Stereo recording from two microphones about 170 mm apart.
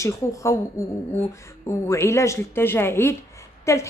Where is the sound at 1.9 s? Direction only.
15° left (ahead or behind).